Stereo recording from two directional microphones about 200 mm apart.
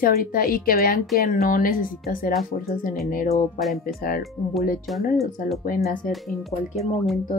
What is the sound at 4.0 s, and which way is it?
Speech, 45° left (ahead or behind).